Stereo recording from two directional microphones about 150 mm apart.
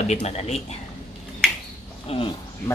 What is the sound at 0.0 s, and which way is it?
Speech, 45° left (ahead or behind).